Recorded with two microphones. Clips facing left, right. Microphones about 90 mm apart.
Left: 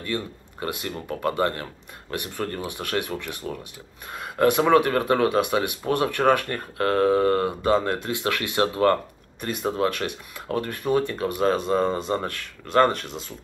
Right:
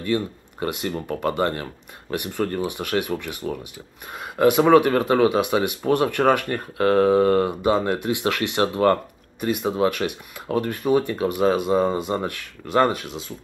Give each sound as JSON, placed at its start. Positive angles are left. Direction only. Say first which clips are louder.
{"t": 0.0, "sound": "speech", "louder": "right 6 dB", "side_deg": -10}